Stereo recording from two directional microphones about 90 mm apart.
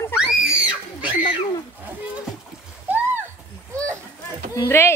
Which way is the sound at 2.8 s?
20° right (ahead or behind).